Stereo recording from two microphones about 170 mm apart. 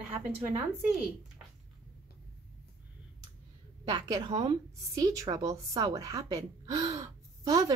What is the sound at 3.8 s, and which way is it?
A woman's voice, 25° right (ahead or behind).